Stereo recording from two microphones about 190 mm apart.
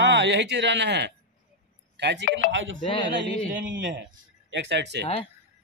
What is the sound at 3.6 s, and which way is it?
Speech, 75° right (ahead or behind).